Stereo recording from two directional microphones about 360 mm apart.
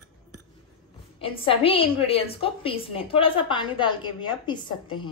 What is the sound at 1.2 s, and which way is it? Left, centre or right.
A woman's voice, centre.